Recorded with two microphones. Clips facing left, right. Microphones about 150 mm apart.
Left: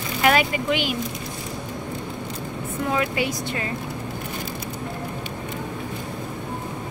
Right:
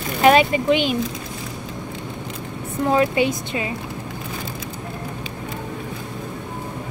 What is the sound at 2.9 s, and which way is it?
Speech, 30° right (ahead or behind).